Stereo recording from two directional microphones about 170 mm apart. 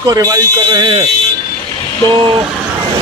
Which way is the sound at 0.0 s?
20° right (ahead or behind).